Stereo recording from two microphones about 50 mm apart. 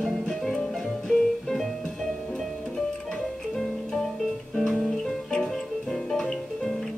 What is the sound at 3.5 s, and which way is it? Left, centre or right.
Music, centre.